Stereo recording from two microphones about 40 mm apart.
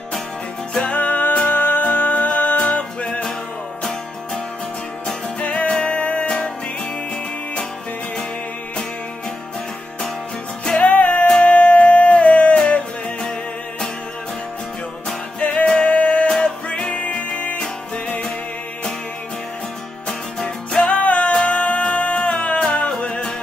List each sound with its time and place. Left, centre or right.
0.7 s music: left
5.7 s music: left
10.8 s music: left
15.4 s music: left
16.3 s music: centre; by 17.6 s left
20.3 s music: centre
20.8 s music: left